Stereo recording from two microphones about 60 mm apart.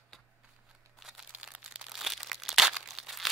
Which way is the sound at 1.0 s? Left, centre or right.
Centre.